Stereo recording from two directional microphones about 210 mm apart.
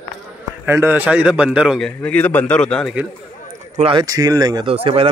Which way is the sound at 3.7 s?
25° right (ahead or behind).